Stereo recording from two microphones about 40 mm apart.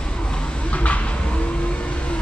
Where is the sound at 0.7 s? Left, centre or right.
Left.